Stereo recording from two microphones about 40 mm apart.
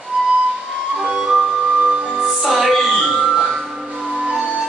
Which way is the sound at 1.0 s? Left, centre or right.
Centre.